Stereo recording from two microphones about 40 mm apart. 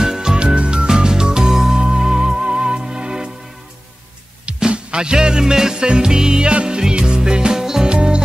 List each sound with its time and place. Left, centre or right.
0.0 s music: centre
4.6 s music: right
7.9 s music: right